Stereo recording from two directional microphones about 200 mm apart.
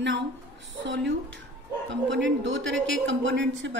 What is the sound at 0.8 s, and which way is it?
Speech, 65° right (ahead or behind).